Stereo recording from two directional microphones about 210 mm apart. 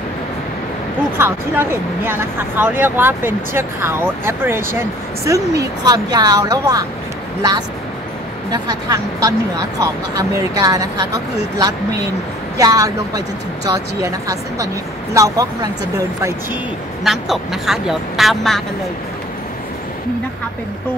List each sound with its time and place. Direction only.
1.1 s speech: 10° right (ahead or behind)
8.5 s speech: 20° right (ahead or behind)
12.5 s speech: 15° right (ahead or behind)
17.0 s speech: centre (ahead or behind)